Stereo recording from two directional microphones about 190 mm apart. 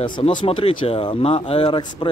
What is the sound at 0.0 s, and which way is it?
Speech, 25° left (ahead or behind).